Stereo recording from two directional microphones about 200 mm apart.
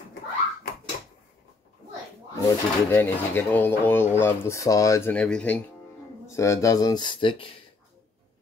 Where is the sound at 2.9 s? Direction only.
10° left (ahead or behind).